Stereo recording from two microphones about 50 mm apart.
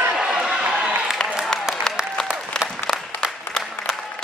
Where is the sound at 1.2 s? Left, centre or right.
Centre.